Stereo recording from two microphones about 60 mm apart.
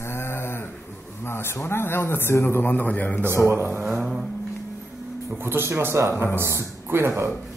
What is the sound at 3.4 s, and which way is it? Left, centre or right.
Speech, right.